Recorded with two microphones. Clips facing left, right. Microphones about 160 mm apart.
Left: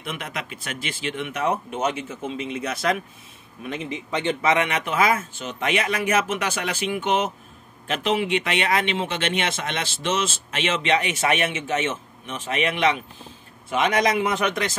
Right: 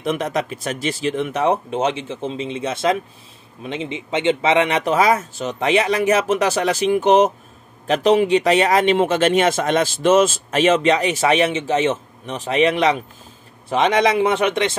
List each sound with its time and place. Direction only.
0.0 s speech: 40° right (ahead or behind)